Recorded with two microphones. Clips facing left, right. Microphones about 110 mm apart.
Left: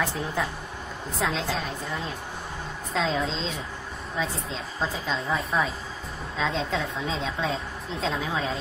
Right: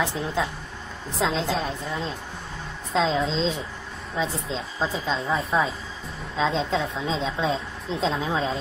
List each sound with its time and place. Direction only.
0.0 s a woman's voice: 20° right (ahead or behind)
2.9 s a woman's voice: 25° right (ahead or behind)